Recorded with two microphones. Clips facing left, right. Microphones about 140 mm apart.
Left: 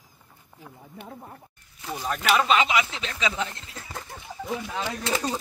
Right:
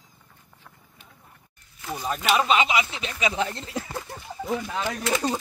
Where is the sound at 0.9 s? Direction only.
65° left (ahead or behind).